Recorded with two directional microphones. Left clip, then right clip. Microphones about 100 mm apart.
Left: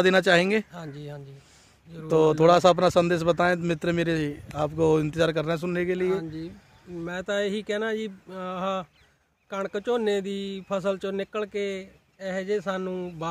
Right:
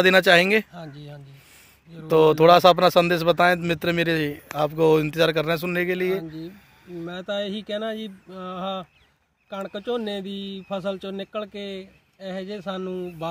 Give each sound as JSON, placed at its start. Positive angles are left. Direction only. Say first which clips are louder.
{"t": 0.0, "sound": "speech", "louder": "right 4 dB", "side_deg": 0}
{"t": 0.9, "sound": "speech", "louder": "left 3 dB", "side_deg": 55}
{"t": 2.0, "sound": "speech", "louder": "right 4 dB", "side_deg": 0}
{"t": 7.0, "sound": "mantra", "louder": "left 1 dB", "side_deg": 60}
{"t": 9.5, "sound": "speech", "louder": "left 1 dB", "side_deg": 60}